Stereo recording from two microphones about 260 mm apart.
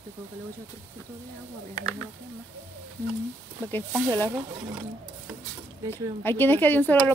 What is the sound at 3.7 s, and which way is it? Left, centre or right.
Speech, centre.